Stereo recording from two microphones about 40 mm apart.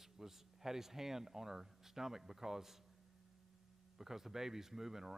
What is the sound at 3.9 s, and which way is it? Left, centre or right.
A man's voice, centre.